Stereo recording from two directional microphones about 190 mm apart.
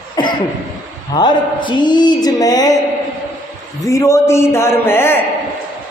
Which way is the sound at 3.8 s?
15° left (ahead or behind).